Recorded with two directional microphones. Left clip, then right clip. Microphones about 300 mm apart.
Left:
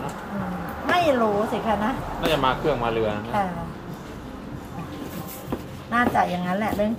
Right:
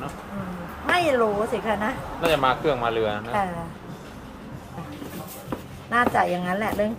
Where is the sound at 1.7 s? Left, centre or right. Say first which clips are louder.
Left 1 dB; centre.